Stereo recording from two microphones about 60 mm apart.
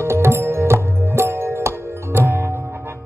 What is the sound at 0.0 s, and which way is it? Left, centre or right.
Music, right.